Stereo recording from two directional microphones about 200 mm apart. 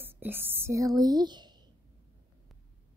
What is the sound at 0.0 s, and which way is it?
Speech, 10° right (ahead or behind).